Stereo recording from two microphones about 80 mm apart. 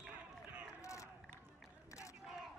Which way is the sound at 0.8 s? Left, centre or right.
Left.